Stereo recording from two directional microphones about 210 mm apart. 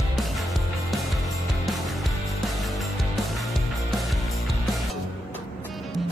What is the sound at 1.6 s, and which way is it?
Music, centre (ahead or behind).